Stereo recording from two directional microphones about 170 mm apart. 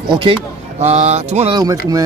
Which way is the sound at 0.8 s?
40° right (ahead or behind).